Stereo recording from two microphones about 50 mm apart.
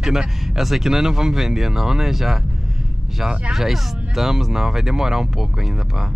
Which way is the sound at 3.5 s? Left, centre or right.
Centre.